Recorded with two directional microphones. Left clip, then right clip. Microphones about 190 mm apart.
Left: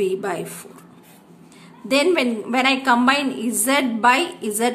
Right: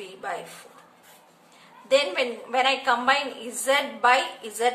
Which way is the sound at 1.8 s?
35° left (ahead or behind).